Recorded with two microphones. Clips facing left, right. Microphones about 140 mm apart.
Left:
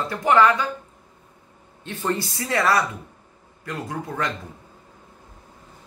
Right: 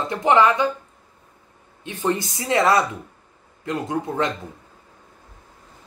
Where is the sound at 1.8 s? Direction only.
15° right (ahead or behind).